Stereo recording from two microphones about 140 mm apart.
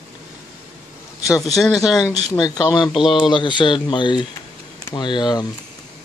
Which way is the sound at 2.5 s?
30° left (ahead or behind).